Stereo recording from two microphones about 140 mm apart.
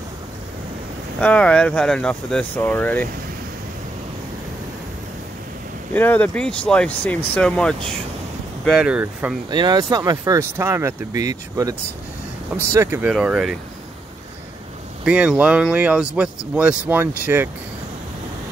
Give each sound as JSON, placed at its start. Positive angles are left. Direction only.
{"t": 1.2, "sound": "speech", "side_deg": 10}
{"t": 5.9, "sound": "speech", "side_deg": 15}
{"t": 9.5, "sound": "speech", "side_deg": -30}
{"t": 12.7, "sound": "speech", "side_deg": -15}
{"t": 13.1, "sound": "speech", "side_deg": -5}
{"t": 15.0, "sound": "speech", "side_deg": -5}